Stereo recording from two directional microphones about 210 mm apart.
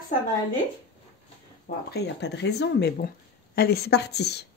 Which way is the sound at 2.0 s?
55° left (ahead or behind).